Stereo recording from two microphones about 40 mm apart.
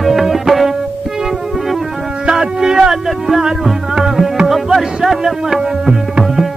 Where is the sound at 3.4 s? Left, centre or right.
Centre.